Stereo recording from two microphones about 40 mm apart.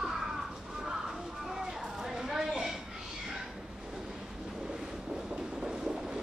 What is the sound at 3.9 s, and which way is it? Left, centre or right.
Train, centre.